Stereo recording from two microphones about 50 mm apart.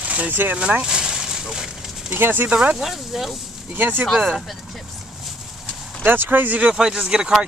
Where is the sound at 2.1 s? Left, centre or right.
Right.